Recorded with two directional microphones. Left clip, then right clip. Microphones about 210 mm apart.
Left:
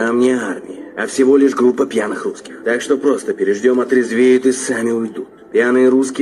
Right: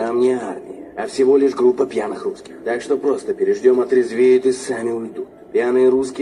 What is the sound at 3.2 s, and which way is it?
Speech, 15° left (ahead or behind).